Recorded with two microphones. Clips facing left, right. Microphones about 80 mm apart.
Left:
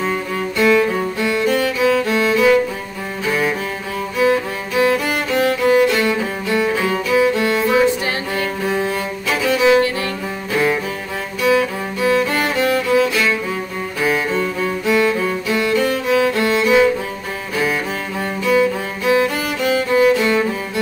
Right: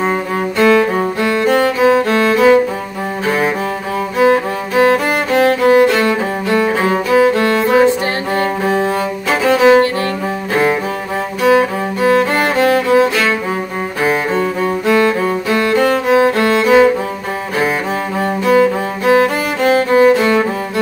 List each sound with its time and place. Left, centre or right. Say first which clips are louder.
0.0 s music: right 4 dB; right
2.1 s music: right 3 dB; right
3.3 s cello: right 3 dB; right
4.2 s music: right 4 dB; right
8.4 s cello: right 6 dB; right
10.5 s music: right 3 dB; right
18.2 s music: right 4 dB; right